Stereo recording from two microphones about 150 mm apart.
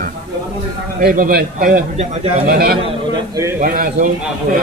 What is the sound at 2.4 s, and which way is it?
Speech, 90° right.